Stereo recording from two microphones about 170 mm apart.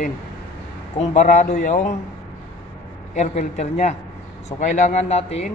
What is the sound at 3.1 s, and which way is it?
A man's voice, 45° left (ahead or behind).